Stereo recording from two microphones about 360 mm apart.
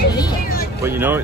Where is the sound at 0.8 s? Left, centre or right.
Centre.